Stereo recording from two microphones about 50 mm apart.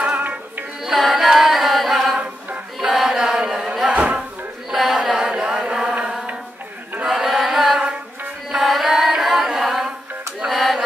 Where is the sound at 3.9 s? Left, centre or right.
Right.